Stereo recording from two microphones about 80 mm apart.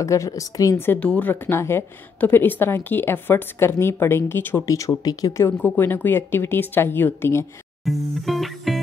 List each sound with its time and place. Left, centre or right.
0.0 s a woman's voice: left
0.7 s a woman's voice: left
1.0 s speech: centre
1.3 s a woman's voice: left
4.6 s speech: left
5.6 s a woman's voice: left
7.8 s music: centre